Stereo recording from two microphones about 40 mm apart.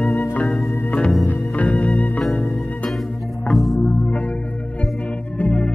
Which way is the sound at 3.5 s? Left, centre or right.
Centre.